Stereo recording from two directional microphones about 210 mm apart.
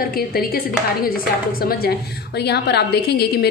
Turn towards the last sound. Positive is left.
turn(degrees=50)  # may be behind; listen again after turning